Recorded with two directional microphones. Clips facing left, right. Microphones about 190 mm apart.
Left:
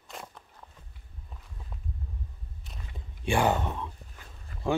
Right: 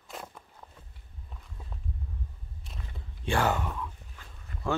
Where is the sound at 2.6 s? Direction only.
Centre (ahead or behind).